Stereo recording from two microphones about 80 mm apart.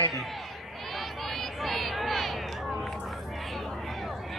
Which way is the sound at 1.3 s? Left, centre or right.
Centre.